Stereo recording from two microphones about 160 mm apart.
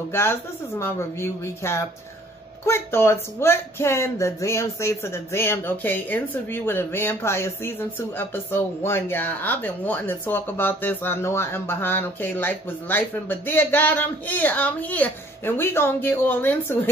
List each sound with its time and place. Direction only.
0.1 s speech: 15° left (ahead or behind)